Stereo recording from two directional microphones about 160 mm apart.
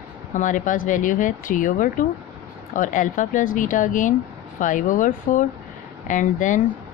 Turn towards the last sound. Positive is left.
turn(degrees=55)  # may be behind; listen again after turning